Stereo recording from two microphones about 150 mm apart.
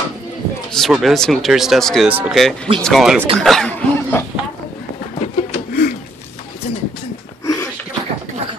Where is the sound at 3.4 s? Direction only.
5° left (ahead or behind).